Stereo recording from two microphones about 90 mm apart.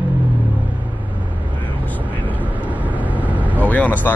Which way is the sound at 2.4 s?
15° right (ahead or behind).